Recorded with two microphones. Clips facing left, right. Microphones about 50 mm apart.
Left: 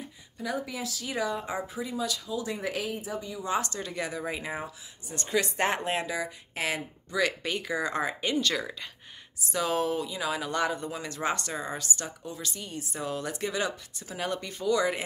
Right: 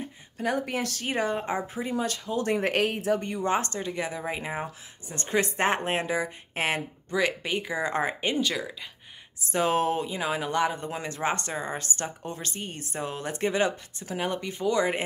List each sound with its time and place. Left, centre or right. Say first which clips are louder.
0.0 s speech: right 6 dB; right
1.1 s speech: right 3 dB; right
3.4 s speech: right 2 dB; right
3.8 s speech: right 2 dB; right
5.0 s speech: right 2 dB; right
8.4 s speech: left 2 dB; centre
9.5 s speech: right 3 dB; right
13.0 s speech: right 3 dB; right
14.1 s speech: right 3 dB; right